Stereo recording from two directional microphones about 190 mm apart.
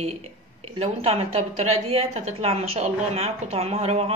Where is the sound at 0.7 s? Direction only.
35° right (ahead or behind).